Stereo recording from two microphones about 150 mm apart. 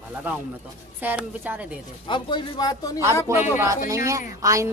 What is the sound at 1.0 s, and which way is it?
Speech, 15° right (ahead or behind).